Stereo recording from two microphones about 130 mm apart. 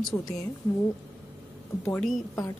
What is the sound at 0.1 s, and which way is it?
Speech, 15° left (ahead or behind).